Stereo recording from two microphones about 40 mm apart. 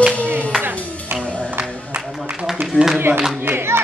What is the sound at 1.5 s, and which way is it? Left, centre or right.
Music, right.